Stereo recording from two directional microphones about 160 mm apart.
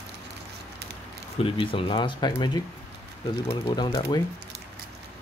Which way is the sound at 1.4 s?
35° left (ahead or behind).